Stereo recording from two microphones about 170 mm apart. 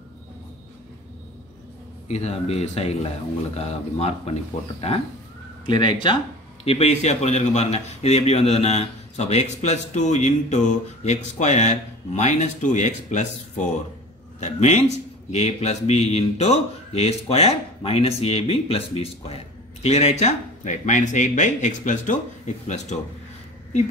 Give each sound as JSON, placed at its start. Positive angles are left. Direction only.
{"t": 2.0, "sound": "a man's voice", "side_deg": 40}
{"t": 5.7, "sound": "a man's voice", "side_deg": 25}